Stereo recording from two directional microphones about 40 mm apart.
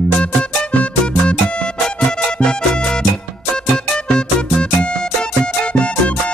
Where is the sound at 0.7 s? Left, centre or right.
Left.